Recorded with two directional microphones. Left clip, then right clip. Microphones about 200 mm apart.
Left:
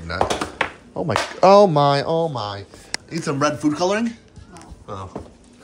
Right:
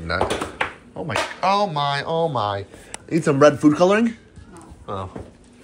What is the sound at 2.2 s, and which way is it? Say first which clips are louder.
Speech: right 4 dB; 10° left (ahead or behind).